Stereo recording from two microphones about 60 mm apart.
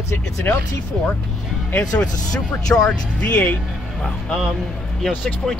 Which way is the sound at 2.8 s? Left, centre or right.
Left.